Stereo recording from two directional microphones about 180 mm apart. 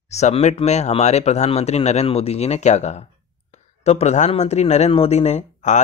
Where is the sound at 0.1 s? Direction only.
40° left (ahead or behind).